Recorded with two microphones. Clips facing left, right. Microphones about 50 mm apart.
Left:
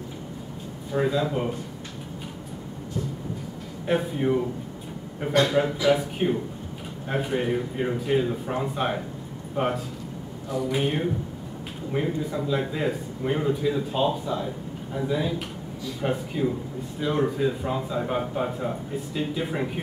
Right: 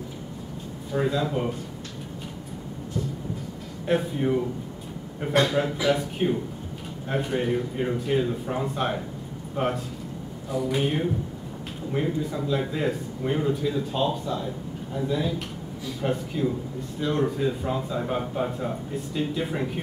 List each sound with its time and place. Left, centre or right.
0.9 s speech: centre
3.8 s speech: centre